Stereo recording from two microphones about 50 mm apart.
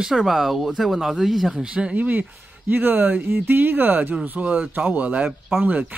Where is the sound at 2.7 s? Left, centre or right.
Right.